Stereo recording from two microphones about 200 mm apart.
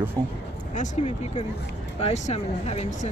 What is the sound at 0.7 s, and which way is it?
Speech, 35° left (ahead or behind).